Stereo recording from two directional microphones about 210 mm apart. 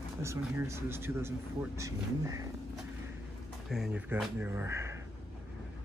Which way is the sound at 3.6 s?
Centre (ahead or behind).